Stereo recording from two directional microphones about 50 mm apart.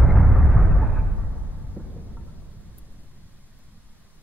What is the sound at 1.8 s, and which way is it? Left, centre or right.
Thunder, left.